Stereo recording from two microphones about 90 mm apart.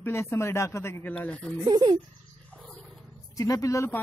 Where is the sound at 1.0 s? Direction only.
20° left (ahead or behind).